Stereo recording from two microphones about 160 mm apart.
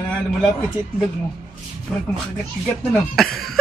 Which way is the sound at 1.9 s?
5° left (ahead or behind).